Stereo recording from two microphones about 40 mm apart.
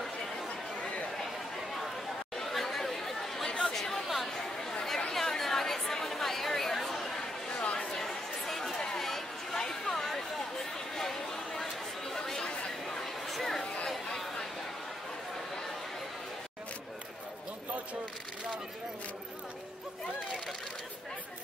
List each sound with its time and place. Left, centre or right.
2.3 s chatter: centre
3.6 s a sound: centre
5.1 s chatter: centre
7.2 s chatter: left
7.9 s chatter: centre
8.8 s a sound: centre
12.1 s chatter: centre
13.0 s a sound: centre
13.8 s chatter: centre